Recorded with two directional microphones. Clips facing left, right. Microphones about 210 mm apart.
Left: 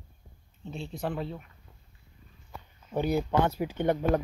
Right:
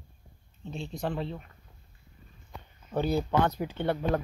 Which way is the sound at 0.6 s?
5° left (ahead or behind).